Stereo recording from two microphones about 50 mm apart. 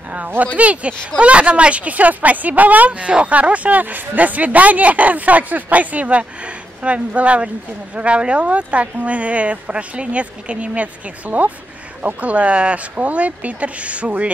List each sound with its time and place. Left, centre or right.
0.6 s speech: right